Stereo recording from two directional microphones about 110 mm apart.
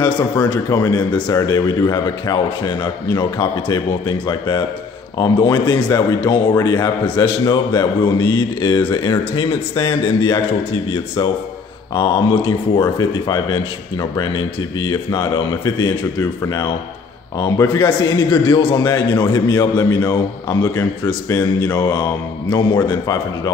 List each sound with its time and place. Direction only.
0.0 s a man's voice: 40° left (ahead or behind)
11.9 s a man's voice: 50° left (ahead or behind)
12.8 s a man's voice: 35° left (ahead or behind)